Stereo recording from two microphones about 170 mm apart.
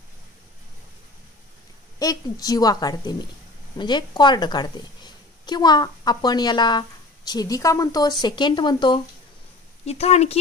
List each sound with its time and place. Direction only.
2.0 s a woman's voice: 20° left (ahead or behind)
9.8 s speech: 40° left (ahead or behind)